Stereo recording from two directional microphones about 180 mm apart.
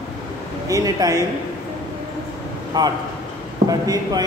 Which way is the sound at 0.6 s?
20° right (ahead or behind).